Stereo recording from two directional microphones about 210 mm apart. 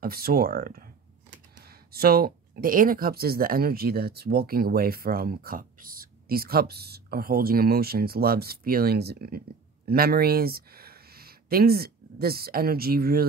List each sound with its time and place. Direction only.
0.0 s speech: 45° right (ahead or behind)